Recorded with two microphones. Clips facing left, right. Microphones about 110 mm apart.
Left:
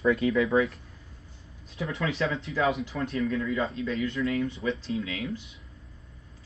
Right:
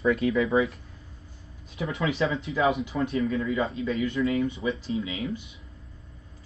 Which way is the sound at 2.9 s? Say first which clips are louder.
Right 4 dB; 20° right (ahead or behind).